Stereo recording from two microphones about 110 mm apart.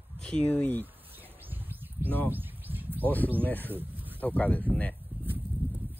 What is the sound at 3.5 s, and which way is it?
Speech, 15° left (ahead or behind).